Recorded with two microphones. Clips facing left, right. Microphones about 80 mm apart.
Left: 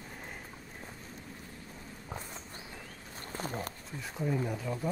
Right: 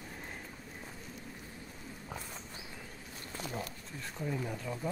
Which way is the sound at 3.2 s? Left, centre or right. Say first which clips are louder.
Left 3 dB; left.